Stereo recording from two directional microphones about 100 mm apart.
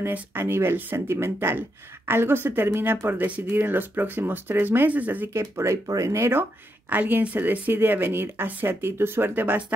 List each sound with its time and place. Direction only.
0.0 s speech: 20° right (ahead or behind)
5.4 s speech: 30° right (ahead or behind)